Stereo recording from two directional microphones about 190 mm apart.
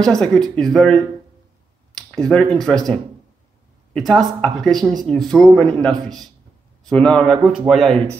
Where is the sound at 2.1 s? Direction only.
5° left (ahead or behind).